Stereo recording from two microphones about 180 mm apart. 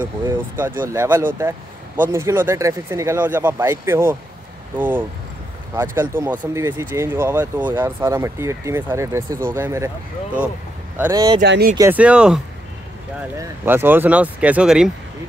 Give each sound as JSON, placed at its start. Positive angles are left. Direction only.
{"t": 0.6, "sound": "speech", "side_deg": -10}
{"t": 11.0, "sound": "speech", "side_deg": -20}
{"t": 11.4, "sound": "speech", "side_deg": -75}
{"t": 11.9, "sound": "speech", "side_deg": -5}
{"t": 13.4, "sound": "speech", "side_deg": -10}